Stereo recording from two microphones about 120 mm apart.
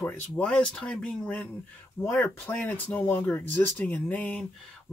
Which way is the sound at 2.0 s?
20° left (ahead or behind).